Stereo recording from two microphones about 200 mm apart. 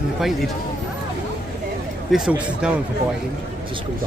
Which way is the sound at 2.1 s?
5° right (ahead or behind).